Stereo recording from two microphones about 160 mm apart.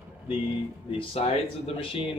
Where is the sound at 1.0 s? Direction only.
35° left (ahead or behind).